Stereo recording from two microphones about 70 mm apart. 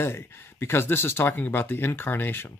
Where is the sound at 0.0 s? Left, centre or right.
Left.